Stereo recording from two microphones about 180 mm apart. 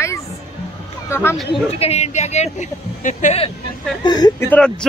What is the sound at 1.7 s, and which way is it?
Speech, 35° left (ahead or behind).